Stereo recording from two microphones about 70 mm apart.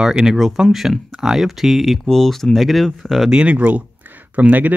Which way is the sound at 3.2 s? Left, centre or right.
Centre.